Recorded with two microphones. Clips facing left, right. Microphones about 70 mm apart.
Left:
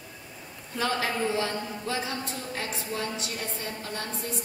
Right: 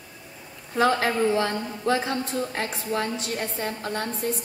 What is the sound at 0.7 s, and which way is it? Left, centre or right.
A woman's voice, right.